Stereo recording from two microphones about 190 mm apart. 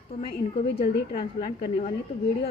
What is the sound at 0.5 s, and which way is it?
Speech, 35° left (ahead or behind).